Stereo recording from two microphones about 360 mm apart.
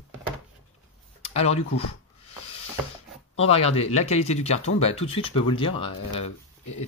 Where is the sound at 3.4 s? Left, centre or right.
Centre.